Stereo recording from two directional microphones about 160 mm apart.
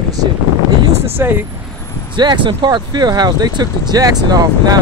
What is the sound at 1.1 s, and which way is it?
Speech, 15° right (ahead or behind).